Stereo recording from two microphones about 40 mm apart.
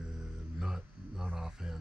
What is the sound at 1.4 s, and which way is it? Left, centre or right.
Speech, centre.